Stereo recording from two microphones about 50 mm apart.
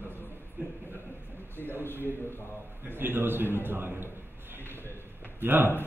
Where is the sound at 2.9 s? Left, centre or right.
Right.